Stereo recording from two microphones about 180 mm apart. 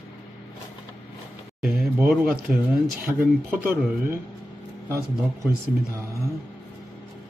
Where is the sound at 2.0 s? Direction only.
5° right (ahead or behind).